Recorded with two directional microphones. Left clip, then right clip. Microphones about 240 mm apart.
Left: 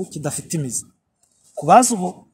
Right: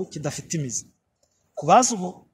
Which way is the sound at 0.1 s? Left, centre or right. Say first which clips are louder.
Left 3 dB; centre.